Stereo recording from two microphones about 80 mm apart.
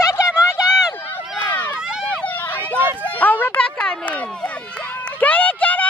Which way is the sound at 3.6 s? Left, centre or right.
Centre.